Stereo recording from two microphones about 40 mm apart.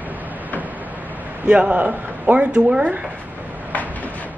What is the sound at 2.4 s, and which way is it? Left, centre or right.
Speech, right.